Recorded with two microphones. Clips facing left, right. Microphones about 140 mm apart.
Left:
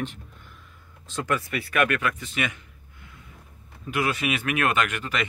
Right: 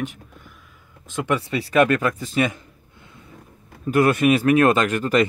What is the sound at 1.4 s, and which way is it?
A man's voice, 30° right (ahead or behind).